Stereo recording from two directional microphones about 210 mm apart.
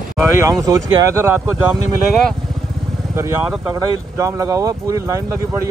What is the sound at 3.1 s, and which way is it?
Speech, 10° right (ahead or behind).